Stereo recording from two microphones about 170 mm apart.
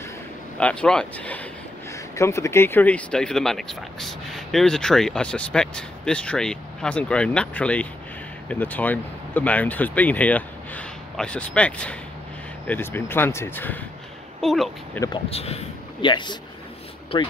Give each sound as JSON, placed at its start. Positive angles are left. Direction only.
{"t": 0.6, "sound": "speech", "side_deg": 5}
{"t": 14.4, "sound": "speech", "side_deg": 0}
{"t": 15.2, "sound": "speech", "side_deg": 35}